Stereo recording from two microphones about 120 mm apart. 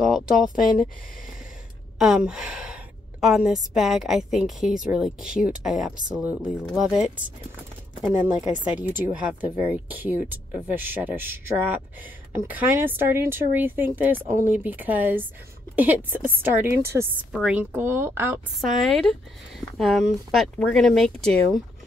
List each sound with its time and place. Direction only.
0.0 s a woman's voice: centre (ahead or behind)
2.0 s a woman's voice: 5° right (ahead or behind); by 17.1 s 20° right (ahead or behind)
17.3 s speech: 5° right (ahead or behind)
18.6 s a woman's voice: centre (ahead or behind)